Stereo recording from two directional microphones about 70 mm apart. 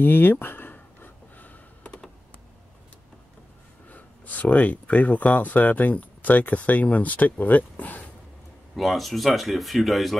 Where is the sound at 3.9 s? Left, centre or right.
Left.